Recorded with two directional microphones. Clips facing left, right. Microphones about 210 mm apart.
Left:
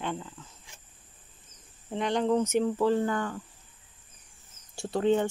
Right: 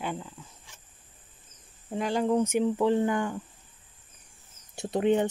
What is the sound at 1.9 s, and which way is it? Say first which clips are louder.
Speech: even; 5° right (ahead or behind).